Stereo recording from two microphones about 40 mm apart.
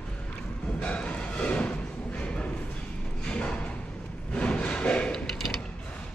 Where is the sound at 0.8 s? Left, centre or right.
Left.